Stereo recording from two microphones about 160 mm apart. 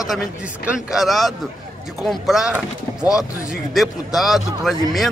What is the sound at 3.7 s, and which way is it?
A man's voice, centre (ahead or behind).